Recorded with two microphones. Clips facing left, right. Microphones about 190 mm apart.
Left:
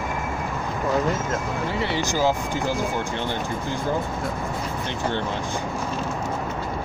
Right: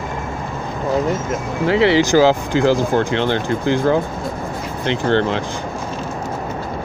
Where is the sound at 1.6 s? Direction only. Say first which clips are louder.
Right 15 dB; 90° right.